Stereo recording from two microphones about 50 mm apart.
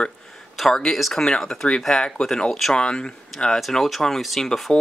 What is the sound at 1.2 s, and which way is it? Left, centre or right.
Speech, centre.